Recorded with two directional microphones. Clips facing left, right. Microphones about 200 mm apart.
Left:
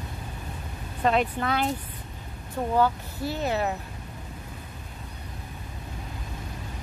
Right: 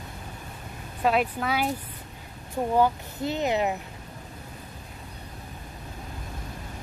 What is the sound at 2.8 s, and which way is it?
Speech, 20° right (ahead or behind).